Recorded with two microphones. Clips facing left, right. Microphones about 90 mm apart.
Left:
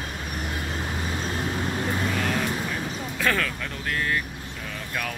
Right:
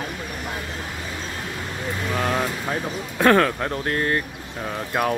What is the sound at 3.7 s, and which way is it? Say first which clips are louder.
Speech: right 5 dB; 45° right (ahead or behind).